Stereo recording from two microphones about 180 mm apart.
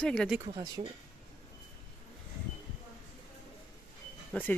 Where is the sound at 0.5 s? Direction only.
25° right (ahead or behind).